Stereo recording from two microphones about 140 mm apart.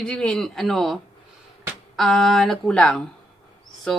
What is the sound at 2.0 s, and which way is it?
Speech, centre (ahead or behind).